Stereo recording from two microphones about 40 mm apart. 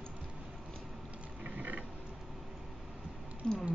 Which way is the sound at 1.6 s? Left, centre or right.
Right.